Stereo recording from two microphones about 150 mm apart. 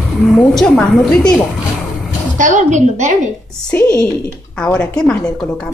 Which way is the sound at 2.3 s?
55° right (ahead or behind).